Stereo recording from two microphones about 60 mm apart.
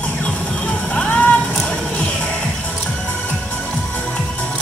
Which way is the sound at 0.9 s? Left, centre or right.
Left.